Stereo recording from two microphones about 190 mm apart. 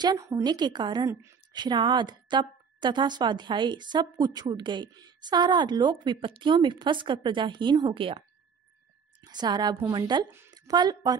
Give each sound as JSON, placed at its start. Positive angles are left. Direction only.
{"t": 0.0, "sound": "a woman's voice", "side_deg": -20}
{"t": 9.2, "sound": "a woman's voice", "side_deg": -20}